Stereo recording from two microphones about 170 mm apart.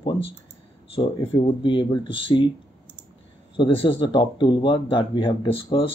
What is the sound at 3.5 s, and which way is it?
Speech, 30° left (ahead or behind).